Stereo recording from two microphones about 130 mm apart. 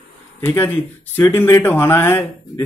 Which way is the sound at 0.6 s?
15° left (ahead or behind).